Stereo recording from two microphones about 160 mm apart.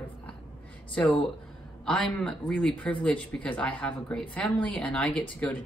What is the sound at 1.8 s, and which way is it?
A woman's voice, 5° left (ahead or behind).